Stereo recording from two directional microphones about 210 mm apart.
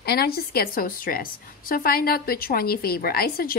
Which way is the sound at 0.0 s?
45° left (ahead or behind).